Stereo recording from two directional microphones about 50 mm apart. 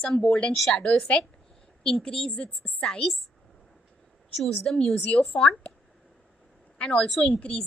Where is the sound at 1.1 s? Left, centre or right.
Left.